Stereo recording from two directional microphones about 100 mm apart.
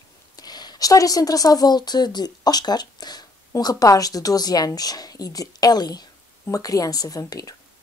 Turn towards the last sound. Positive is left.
turn(degrees=35)  # may be behind; listen again after turning